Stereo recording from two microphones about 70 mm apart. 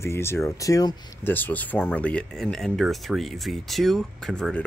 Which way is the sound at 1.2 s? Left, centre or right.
Left.